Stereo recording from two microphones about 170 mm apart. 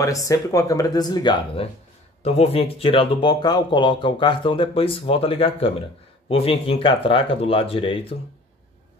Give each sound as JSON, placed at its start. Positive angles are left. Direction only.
{"t": 0.0, "sound": "speech", "side_deg": 20}